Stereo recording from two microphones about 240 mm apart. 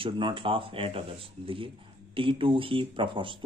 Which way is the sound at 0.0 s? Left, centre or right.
Right.